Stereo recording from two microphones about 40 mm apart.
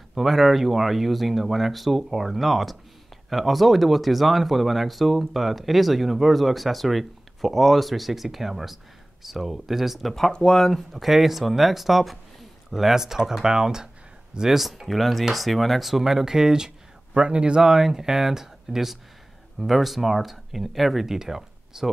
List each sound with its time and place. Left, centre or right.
0.1 s speech: centre
10.3 s speech: centre
10.9 s speech: centre
14.9 s speech: centre; by 17.6 s right
17.6 s speech: centre